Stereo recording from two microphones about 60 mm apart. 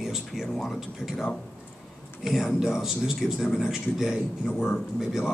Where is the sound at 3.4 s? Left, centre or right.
Centre.